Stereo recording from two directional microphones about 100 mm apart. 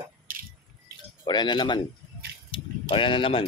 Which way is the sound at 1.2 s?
50° left (ahead or behind).